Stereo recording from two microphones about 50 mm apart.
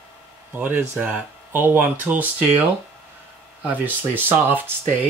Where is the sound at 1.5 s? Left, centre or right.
Right.